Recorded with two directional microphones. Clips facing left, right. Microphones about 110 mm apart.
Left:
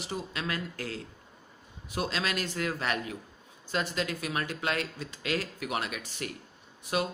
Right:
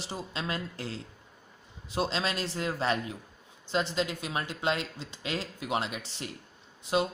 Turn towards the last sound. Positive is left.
turn(degrees=-25)  # may be behind; listen again after turning